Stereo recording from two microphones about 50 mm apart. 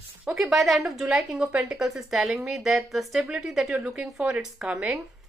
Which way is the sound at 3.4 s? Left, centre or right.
Centre.